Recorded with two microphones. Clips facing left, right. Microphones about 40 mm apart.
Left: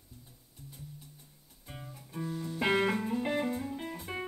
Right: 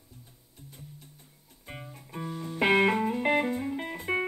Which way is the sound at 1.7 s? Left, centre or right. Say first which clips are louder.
Right 4 dB; right.